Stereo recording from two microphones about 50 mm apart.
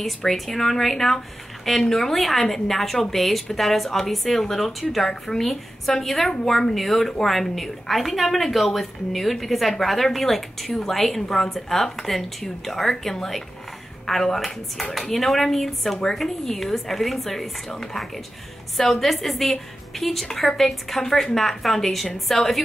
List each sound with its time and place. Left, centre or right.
0.0 s a woman's voice: centre
18.8 s a woman's voice: centre